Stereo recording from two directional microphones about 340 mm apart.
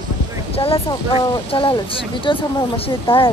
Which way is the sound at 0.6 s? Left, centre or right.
Centre.